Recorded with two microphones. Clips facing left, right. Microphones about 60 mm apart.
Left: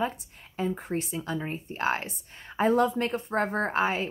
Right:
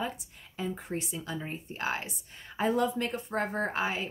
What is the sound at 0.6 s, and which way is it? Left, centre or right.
Speech, left.